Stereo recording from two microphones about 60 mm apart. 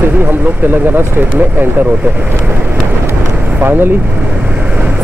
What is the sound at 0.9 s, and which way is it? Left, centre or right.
Speech, right.